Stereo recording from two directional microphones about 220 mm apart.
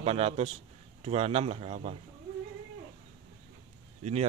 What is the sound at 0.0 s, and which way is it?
A man's voice, 25° right (ahead or behind).